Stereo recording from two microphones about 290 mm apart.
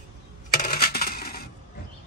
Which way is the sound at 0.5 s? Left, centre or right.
Left.